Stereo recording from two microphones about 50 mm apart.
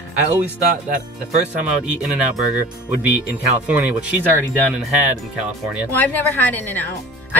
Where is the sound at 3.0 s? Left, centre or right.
Right.